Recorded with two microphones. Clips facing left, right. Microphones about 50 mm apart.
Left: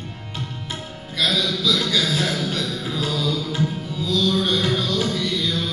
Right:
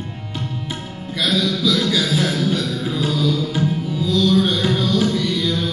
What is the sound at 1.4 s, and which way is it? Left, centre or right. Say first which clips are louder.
Speech: right 6 dB; right.